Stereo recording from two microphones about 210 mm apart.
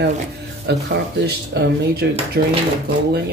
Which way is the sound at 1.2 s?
50° right (ahead or behind).